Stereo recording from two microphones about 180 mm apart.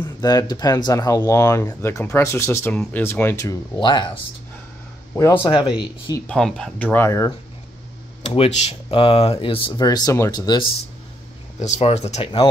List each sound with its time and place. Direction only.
0.0 s speech: 20° left (ahead or behind)
5.4 s speech: 25° left (ahead or behind)
6.2 s speech: 5° left (ahead or behind)
8.3 s speech: 35° left (ahead or behind)
11.6 s speech: 40° left (ahead or behind)